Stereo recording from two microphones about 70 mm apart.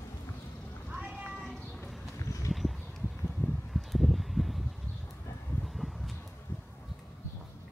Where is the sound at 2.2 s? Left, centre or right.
Left.